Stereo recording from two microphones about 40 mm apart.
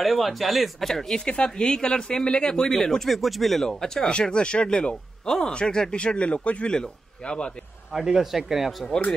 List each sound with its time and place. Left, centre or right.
0.0 s speech: centre
1.1 s speech: left
2.8 s speech: centre
3.6 s speech: centre
7.9 s speech: centre